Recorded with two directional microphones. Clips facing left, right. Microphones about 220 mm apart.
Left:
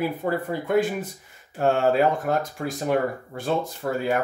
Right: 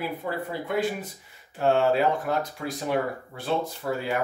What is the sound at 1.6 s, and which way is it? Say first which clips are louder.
Speech: left 2 dB; 45° left (ahead or behind).